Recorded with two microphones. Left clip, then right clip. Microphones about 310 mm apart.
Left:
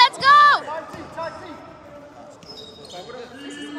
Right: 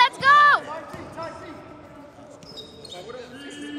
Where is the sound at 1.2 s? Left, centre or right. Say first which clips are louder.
Left 5 dB; left.